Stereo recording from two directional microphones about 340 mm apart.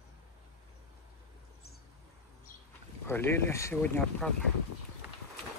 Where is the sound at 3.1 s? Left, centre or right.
Centre.